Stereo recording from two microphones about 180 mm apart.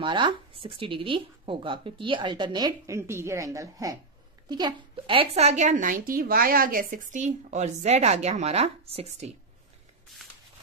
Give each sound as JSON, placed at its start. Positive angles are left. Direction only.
{"t": 0.0, "sound": "a woman's voice", "side_deg": -25}